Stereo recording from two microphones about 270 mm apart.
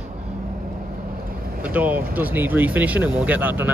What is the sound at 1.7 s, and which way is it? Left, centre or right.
Speech, centre.